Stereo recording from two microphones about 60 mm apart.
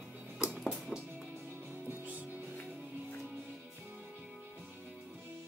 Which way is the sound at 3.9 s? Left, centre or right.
Right.